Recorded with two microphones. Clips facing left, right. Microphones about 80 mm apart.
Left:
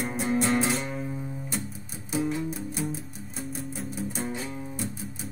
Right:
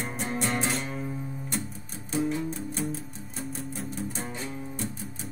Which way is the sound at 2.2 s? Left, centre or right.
Centre.